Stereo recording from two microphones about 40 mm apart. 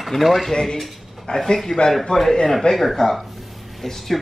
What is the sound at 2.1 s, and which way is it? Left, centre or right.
Speech, left.